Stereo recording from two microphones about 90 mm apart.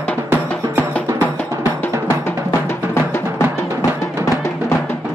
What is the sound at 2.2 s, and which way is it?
Music, 25° left (ahead or behind).